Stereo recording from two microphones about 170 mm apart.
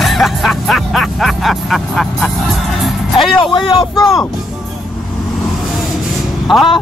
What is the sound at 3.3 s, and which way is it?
Speech, 30° left (ahead or behind).